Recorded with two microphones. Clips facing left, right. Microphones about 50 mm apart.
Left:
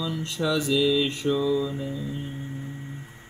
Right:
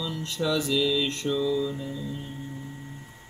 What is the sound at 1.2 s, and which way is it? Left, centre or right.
Mantra, centre.